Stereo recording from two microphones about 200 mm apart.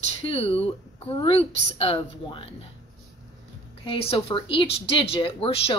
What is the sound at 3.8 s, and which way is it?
Speech, 30° left (ahead or behind).